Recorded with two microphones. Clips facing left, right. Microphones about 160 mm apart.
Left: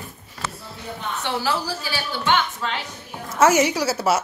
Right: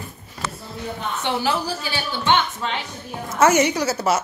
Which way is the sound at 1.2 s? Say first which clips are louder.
Right 2 dB; 20° right (ahead or behind).